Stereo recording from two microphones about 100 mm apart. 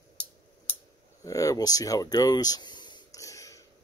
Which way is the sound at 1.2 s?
35° left (ahead or behind).